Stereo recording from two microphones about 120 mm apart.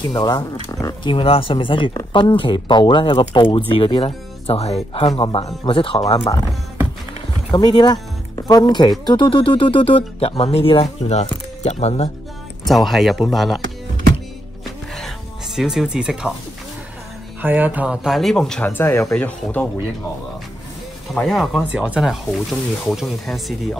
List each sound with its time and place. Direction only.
0.1 s speech: 35° left (ahead or behind)
1.0 s speech: 50° left (ahead or behind)
5.6 s speech: 45° left (ahead or behind)
7.5 s speech: 35° left (ahead or behind); by 12.1 s 65° left (ahead or behind)
12.6 s speech: centre (ahead or behind)
14.6 s music: centre (ahead or behind)
17.4 s speech: 15° right (ahead or behind); by 18.7 s 5° left (ahead or behind)
18.7 s speech: 20° left (ahead or behind)
21.1 s speech: 5° left (ahead or behind)